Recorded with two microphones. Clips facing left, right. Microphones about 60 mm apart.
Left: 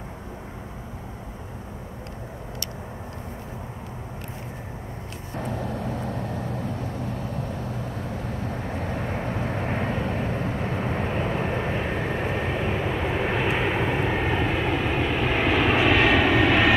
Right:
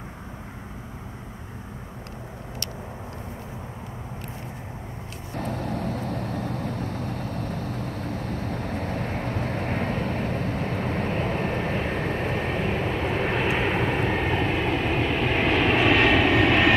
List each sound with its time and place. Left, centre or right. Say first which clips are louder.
5.4 s vehicle: right 1 dB; right
8.9 s vehicle: even; left; by 16.7 s centre